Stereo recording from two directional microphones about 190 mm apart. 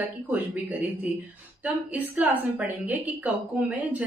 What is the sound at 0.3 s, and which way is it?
Speech, 10° right (ahead or behind).